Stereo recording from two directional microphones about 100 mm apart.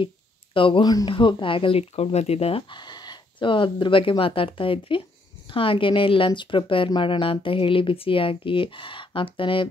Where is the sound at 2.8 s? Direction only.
50° left (ahead or behind).